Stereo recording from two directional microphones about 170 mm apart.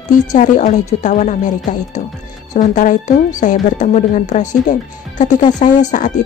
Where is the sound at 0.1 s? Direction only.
50° left (ahead or behind).